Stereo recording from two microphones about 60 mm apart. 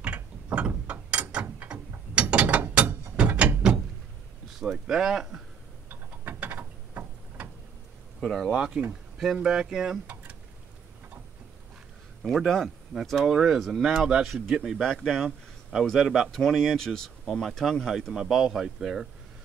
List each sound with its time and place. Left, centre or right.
0.0 s ratchet: right
3.2 s a sound: right
4.6 s speech: centre
5.9 s a sound: right
8.2 s speech: centre
8.5 s speech: centre
12.2 s speech: centre
14.8 s a man's voice: centre